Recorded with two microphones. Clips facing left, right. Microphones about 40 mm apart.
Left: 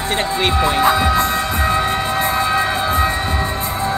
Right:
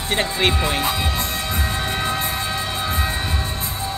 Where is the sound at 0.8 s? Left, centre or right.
Centre.